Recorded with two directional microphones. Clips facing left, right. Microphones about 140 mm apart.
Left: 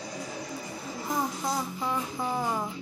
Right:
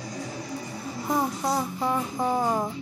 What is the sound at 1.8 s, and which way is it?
Music, 50° right (ahead or behind).